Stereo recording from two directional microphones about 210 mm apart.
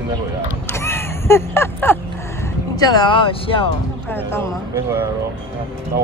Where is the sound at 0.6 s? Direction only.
10° left (ahead or behind).